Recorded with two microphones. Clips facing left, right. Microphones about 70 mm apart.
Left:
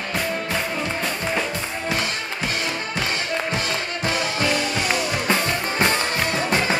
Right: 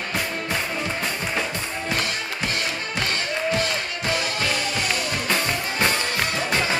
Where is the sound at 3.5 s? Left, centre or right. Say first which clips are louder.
Right 1 dB; centre.